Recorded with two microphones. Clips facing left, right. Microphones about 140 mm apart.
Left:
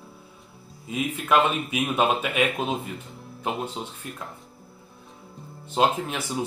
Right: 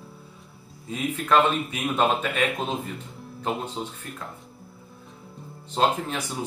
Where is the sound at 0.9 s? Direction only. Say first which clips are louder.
Even; 10° left (ahead or behind).